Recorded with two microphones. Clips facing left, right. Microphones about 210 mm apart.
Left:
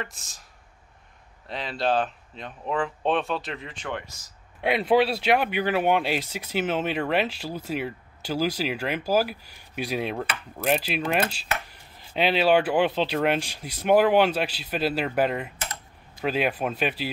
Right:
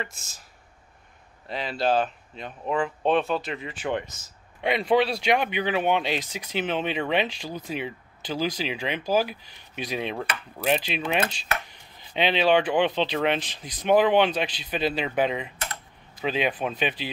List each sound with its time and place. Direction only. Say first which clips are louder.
0.0 s speech: right 1 dB; centre (ahead or behind)
1.5 s speech: right 1 dB; centre (ahead or behind)
4.1 s speech: right 2 dB; 20° right (ahead or behind)
4.6 s speech: left 1 dB; 5° left (ahead or behind)